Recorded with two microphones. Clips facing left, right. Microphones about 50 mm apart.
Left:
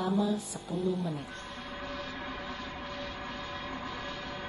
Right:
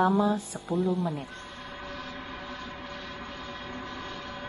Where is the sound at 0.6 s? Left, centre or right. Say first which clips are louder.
Right 6 dB; centre.